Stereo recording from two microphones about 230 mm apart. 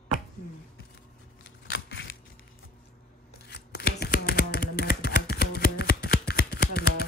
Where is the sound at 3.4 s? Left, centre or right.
Left.